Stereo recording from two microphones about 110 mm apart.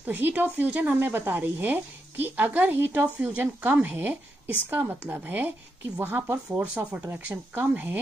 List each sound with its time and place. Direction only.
0.0 s speech: 15° right (ahead or behind)